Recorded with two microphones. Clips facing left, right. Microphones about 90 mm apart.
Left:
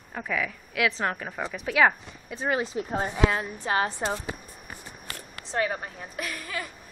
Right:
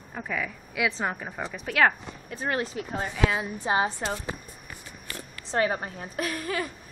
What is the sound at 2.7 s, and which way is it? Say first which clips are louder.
Speech: left 3 dB; 30° left (ahead or behind).